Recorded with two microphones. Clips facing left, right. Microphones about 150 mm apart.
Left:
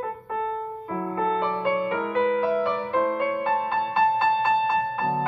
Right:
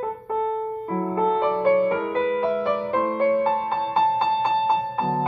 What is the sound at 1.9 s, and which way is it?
Music, 30° right (ahead or behind).